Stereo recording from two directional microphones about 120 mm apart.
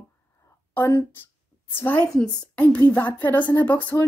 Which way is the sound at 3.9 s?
25° left (ahead or behind).